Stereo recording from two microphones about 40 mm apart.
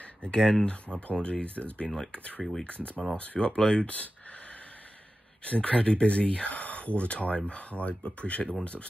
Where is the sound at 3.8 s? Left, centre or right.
Left.